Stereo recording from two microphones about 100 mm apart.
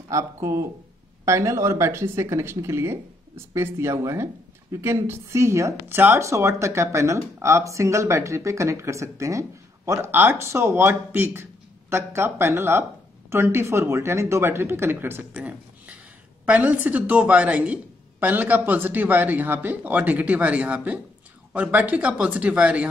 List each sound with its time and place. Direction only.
0.1 s speech: 30° right (ahead or behind)
15.3 s a sound: 10° right (ahead or behind)
16.4 s a man's voice: 15° right (ahead or behind)